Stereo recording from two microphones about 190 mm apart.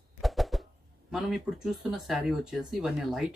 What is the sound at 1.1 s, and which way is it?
Speech, centre (ahead or behind).